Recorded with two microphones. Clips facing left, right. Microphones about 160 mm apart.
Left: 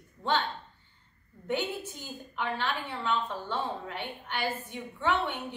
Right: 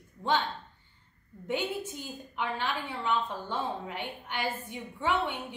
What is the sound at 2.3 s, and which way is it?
A woman's voice, 15° right (ahead or behind).